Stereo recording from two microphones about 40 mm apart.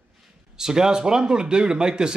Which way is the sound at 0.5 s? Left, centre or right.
Centre.